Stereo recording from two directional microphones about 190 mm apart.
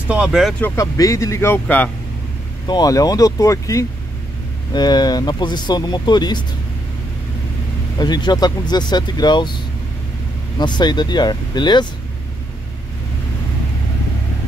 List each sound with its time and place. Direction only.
0.1 s speech: 5° right (ahead or behind)
2.6 s speech: 20° left (ahead or behind)
8.0 s speech: 20° left (ahead or behind)
10.6 s speech: 25° left (ahead or behind)